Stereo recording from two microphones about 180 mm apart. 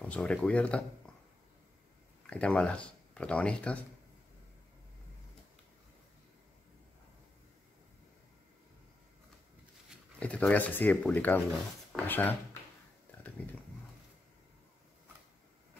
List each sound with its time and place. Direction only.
0.0 s speech: 5° left (ahead or behind)
2.2 s speech: 5° left (ahead or behind)
9.8 s speech: 5° left (ahead or behind)
13.4 s a sound: 5° left (ahead or behind)